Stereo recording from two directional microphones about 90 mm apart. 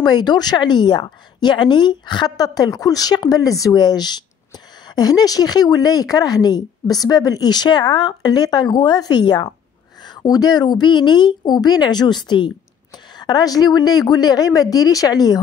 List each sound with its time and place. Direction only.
0.0 s speech: 50° left (ahead or behind)
13.2 s speech: 45° left (ahead or behind)